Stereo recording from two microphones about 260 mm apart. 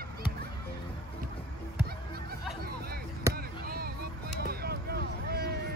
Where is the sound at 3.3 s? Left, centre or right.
Right.